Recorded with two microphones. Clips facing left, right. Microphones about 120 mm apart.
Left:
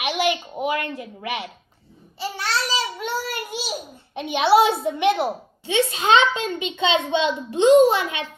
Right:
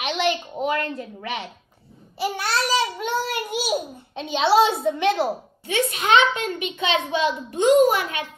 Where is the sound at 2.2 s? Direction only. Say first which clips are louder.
Right 2 dB; 10° right (ahead or behind).